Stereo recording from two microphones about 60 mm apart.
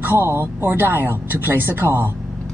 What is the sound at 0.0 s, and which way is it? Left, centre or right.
Speech, right.